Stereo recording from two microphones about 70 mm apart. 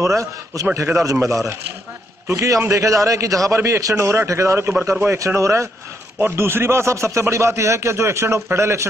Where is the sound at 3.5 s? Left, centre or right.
Right.